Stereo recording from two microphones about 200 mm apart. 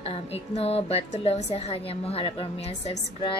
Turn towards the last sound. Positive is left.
turn(degrees=30)  # may be behind; listen again after turning